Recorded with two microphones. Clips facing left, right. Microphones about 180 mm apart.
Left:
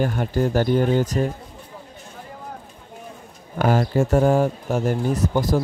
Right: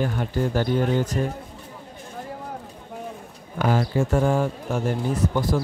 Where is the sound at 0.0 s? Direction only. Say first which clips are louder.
Left 3 dB; 45° left (ahead or behind).